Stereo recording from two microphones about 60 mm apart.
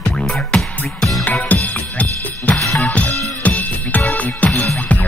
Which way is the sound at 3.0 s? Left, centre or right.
Left.